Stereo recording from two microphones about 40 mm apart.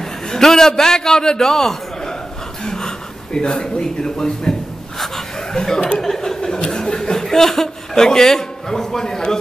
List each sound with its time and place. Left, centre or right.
0.0 s a man's voice: centre
2.6 s a sound: centre
3.3 s a man's voice: centre
4.9 s chuckle: centre